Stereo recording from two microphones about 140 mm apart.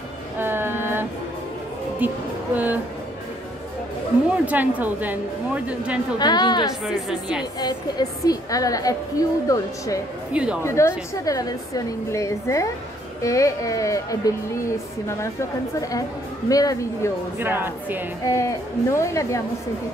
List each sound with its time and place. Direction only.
0.4 s music: 15° right (ahead or behind)
2.5 s speech: 10° right (ahead or behind)
4.3 s speech: 10° right (ahead or behind)
6.1 s a woman's voice: 30° left (ahead or behind)
7.1 s a woman's voice: 5° right (ahead or behind)
7.6 s a woman's voice: 25° left (ahead or behind)
10.3 s speech: 5° right (ahead or behind)
10.6 s a woman's voice: 20° left (ahead or behind)
16.4 s a woman's voice: 25° left (ahead or behind)
17.4 s speech: 15° right (ahead or behind)
18.2 s a woman's voice: 20° left (ahead or behind)